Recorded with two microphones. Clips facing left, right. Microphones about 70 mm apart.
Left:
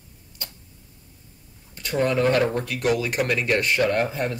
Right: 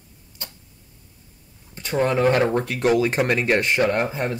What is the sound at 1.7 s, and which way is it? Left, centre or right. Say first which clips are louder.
Speech: right 1 dB; right.